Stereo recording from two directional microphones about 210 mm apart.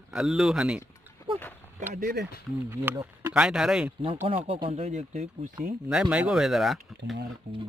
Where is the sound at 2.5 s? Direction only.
10° right (ahead or behind).